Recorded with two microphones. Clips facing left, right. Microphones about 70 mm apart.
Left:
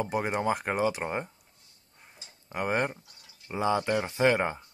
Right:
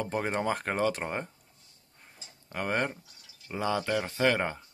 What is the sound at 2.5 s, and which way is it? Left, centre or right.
Speech, centre.